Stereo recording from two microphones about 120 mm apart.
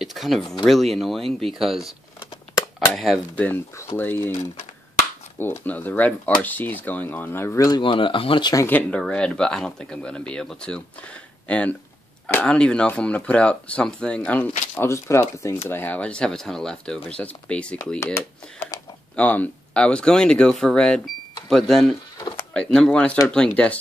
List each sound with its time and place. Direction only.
0.0 s speech: centre (ahead or behind)
2.9 s speech: centre (ahead or behind)
3.3 s speech: 15° left (ahead or behind)
5.4 s speech: 15° left (ahead or behind)
7.8 s speech: 45° left (ahead or behind)
8.6 s speech: 10° left (ahead or behind)
14.8 s speech: 25° left (ahead or behind)
18.0 s speech: 20° left (ahead or behind)